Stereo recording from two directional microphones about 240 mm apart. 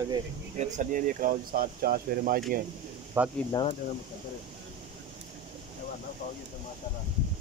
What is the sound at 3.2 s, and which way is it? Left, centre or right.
Speech, centre.